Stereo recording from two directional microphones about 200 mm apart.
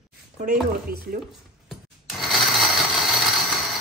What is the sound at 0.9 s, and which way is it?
Speech, 50° right (ahead or behind).